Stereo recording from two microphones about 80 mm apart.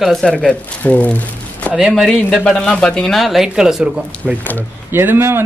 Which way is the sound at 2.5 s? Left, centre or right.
Centre.